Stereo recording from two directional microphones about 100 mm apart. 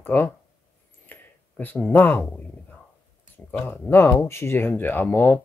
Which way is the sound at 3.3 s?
20° left (ahead or behind).